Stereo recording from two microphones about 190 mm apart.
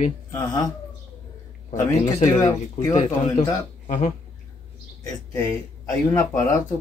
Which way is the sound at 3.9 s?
40° left (ahead or behind).